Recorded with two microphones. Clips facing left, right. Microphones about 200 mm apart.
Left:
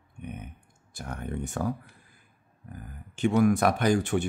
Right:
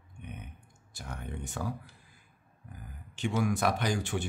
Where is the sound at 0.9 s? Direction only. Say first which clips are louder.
Left 7 dB; 50° left (ahead or behind).